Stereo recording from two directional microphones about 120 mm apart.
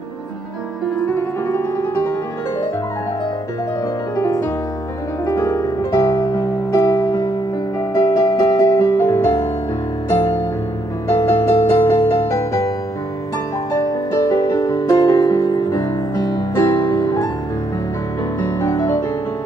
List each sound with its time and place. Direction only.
1.0 s music: 20° left (ahead or behind)
4.2 s music: 25° left (ahead or behind)
11.1 s music: 25° left (ahead or behind)
11.5 s music: 55° left (ahead or behind)
13.7 s music: 25° left (ahead or behind)
16.5 s music: 20° left (ahead or behind)
18.4 s music: 25° left (ahead or behind)